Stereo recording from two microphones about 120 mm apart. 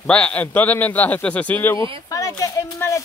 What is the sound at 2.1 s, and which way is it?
Speech, 30° left (ahead or behind).